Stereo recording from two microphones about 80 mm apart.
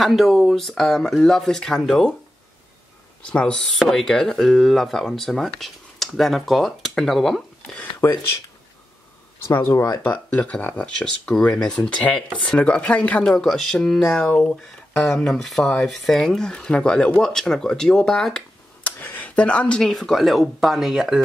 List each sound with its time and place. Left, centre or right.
0.0 s speech: centre
3.3 s speech: centre
8.0 s speech: left
9.5 s speech: left
10.0 s speech: centre
18.9 s a sound: left
19.8 s speech: centre